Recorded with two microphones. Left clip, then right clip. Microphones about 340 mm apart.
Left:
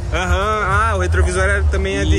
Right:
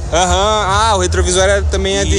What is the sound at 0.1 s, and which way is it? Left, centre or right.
Speech, centre.